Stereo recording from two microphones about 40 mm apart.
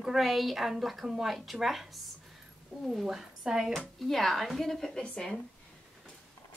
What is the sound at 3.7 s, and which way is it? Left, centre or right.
A woman's voice, centre.